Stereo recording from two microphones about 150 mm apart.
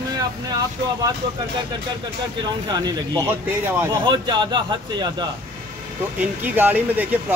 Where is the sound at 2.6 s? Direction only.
30° right (ahead or behind).